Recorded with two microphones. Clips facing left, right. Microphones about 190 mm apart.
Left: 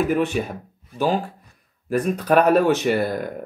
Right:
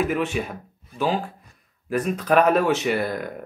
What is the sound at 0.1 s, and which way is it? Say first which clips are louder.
Speech: left 3 dB; 35° left (ahead or behind).